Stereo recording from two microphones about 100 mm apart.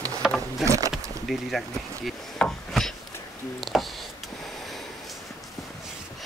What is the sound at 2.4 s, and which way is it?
Wood, 5° left (ahead or behind).